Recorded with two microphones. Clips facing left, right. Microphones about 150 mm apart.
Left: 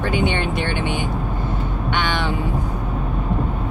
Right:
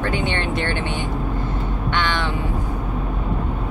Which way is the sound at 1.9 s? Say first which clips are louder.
Even; 10° left (ahead or behind).